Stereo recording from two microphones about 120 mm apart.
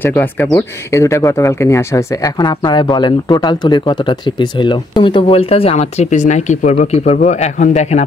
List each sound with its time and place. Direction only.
0.0 s speech: 15° left (ahead or behind)
2.2 s speech: 35° left (ahead or behind); by 8.0 s 80° left